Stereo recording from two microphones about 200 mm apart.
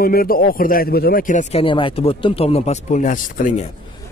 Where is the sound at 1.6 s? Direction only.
25° left (ahead or behind); by 3.6 s 40° left (ahead or behind).